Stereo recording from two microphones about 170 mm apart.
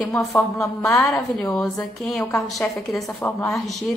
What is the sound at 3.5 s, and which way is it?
Speech, centre (ahead or behind).